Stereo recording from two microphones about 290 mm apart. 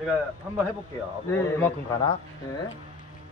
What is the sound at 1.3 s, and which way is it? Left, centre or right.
Speech, centre.